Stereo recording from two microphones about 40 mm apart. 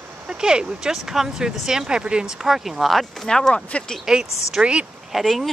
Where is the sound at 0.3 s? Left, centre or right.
Right.